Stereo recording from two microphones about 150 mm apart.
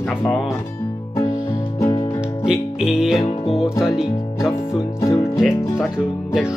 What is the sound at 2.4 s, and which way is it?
Music, 5° right (ahead or behind).